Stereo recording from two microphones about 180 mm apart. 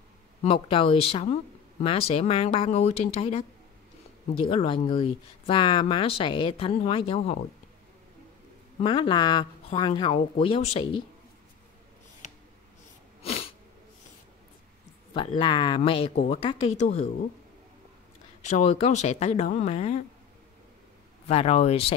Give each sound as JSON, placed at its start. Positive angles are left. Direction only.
{"t": 0.4, "sound": "speech", "side_deg": 30}
{"t": 4.5, "sound": "speech", "side_deg": 30}
{"t": 8.8, "sound": "speech", "side_deg": 30}
{"t": 13.2, "sound": "a sound", "side_deg": 35}
{"t": 15.1, "sound": "speech", "side_deg": 25}
{"t": 18.5, "sound": "speech", "side_deg": 40}
{"t": 21.3, "sound": "speech", "side_deg": 35}